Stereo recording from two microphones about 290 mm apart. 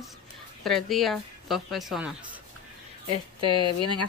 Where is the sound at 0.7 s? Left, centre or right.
Centre.